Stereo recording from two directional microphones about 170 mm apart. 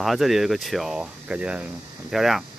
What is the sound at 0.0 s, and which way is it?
Speech, centre (ahead or behind).